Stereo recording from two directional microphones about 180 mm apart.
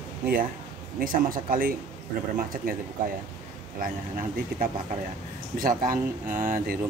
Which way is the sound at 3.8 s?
50° right (ahead or behind).